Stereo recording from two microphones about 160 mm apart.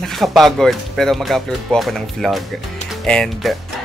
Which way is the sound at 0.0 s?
Centre (ahead or behind).